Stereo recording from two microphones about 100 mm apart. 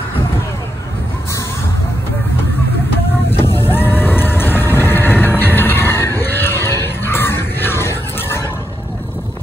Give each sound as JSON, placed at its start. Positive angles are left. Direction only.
{"t": 3.3, "sound": "vehicle", "side_deg": 25}